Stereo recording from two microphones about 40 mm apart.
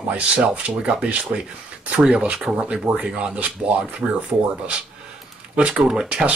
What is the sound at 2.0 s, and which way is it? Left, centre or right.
Speech, right.